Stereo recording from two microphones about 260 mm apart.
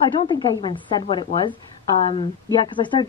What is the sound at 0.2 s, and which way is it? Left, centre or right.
A woman's voice, centre.